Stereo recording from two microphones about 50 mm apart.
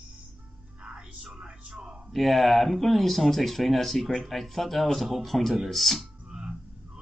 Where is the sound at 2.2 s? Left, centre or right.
Centre.